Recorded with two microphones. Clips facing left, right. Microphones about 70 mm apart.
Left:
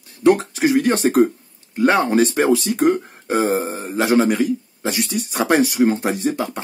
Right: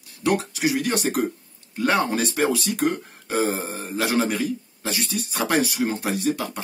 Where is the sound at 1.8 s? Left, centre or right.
Left.